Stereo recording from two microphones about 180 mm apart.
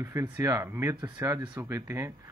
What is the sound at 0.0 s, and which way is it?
Speech, 15° right (ahead or behind).